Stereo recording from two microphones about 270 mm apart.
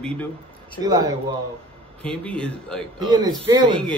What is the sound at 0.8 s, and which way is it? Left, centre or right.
Speech, centre.